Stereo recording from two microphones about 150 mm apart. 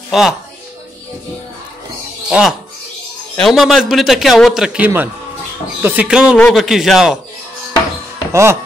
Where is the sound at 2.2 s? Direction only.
5° right (ahead or behind).